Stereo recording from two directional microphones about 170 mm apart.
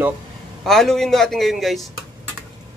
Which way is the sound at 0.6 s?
Centre (ahead or behind).